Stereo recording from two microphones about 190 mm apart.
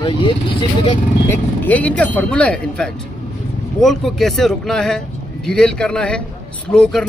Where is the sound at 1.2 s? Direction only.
10° left (ahead or behind).